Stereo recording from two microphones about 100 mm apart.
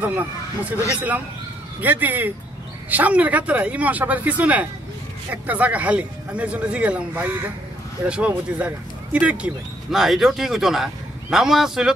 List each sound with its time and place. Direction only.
0.0 s speech: 15° right (ahead or behind)
1.8 s speech: 15° right (ahead or behind)